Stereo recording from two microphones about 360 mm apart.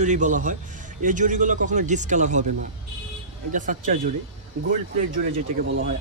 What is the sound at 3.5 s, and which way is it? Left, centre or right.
Speech, right.